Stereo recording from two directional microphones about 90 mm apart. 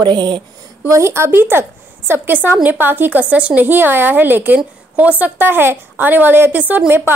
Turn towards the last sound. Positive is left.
turn(degrees=-25)  # may be behind; listen again after turning